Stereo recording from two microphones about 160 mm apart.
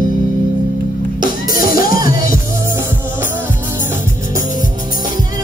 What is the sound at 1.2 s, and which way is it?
Music, 25° right (ahead or behind).